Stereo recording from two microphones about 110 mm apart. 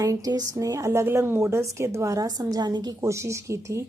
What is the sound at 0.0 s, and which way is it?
Speech, 35° right (ahead or behind).